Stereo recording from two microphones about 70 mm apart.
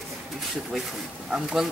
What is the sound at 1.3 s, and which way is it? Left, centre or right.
Speech, centre.